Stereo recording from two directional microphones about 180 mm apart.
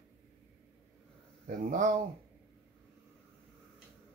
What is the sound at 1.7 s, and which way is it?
Speech, 45° right (ahead or behind).